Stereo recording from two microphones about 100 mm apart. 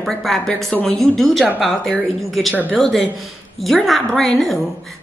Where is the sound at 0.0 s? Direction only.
5° left (ahead or behind).